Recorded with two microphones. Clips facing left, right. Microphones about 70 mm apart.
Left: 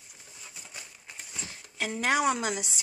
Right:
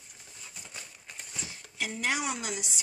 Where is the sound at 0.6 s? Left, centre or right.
Centre.